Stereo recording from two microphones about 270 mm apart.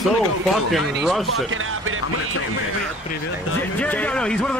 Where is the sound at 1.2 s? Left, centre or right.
Right.